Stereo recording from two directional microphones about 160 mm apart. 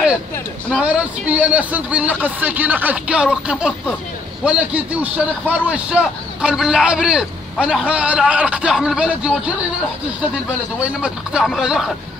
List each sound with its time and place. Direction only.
0.8 s a man's voice: 10° right (ahead or behind)
10.8 s a man's voice: 5° right (ahead or behind)